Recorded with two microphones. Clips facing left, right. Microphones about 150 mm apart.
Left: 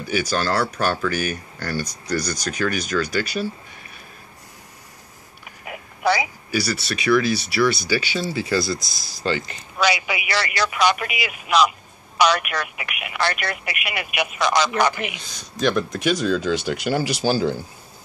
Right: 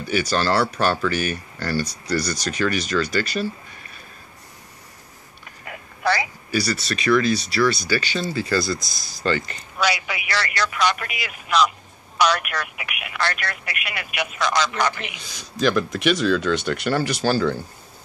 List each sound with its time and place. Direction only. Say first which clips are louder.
0.1 s speech: right 1 dB; centre (ahead or behind)
5.7 s speech: left 2 dB; 15° left (ahead or behind)
8.8 s speech: right 1 dB; 45° right (ahead or behind)
9.8 s speech: left 2 dB; centre (ahead or behind)
13.1 s speech: left 2 dB; 10° left (ahead or behind)
15.3 s speech: right 1 dB; centre (ahead or behind)